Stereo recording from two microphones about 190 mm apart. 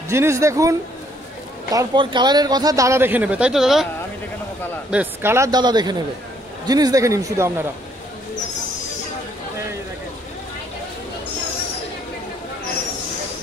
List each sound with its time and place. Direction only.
0.1 s speech: 15° right (ahead or behind)
4.9 s a man's voice: 10° right (ahead or behind)